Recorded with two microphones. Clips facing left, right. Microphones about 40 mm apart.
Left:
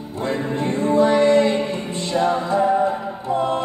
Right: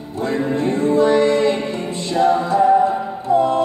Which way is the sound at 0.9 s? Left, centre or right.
Left.